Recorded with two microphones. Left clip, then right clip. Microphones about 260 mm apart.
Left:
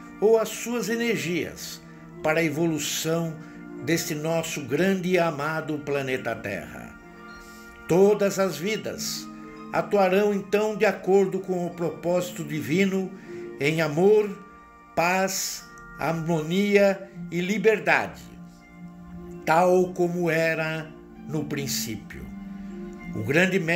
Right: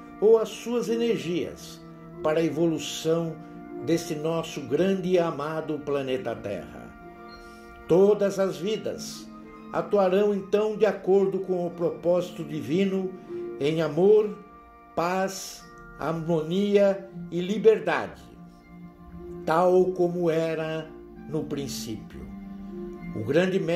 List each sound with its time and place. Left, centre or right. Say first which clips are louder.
0.2 s speech: right 1 dB; left
7.9 s speech: even; left
19.4 s speech: left 1 dB; left
23.2 s speech: left 1 dB; left